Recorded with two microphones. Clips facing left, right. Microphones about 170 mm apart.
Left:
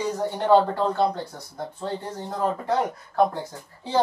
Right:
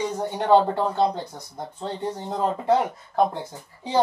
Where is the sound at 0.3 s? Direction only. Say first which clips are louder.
Right 1 dB; 15° right (ahead or behind).